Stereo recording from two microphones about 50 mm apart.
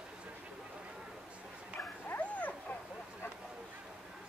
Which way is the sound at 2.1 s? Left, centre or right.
Left.